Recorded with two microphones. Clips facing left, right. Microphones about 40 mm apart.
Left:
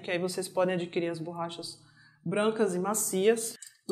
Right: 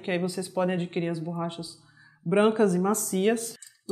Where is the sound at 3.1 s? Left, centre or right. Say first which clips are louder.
Even; centre.